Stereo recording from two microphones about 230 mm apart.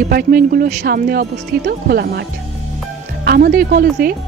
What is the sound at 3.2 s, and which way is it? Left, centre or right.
Speech, right.